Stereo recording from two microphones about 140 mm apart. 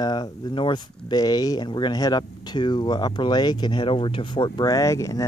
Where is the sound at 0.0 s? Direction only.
30° left (ahead or behind).